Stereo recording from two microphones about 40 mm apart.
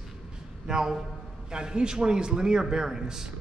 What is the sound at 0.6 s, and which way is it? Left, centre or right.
A man's voice, centre.